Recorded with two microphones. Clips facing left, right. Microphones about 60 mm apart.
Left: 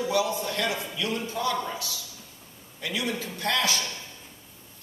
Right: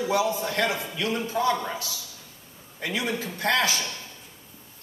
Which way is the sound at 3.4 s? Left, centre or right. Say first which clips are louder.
Right 4 dB; right.